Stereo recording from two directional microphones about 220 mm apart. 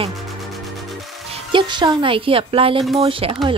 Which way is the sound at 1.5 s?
20° right (ahead or behind).